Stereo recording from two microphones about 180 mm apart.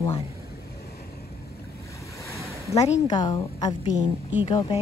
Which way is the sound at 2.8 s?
40° left (ahead or behind).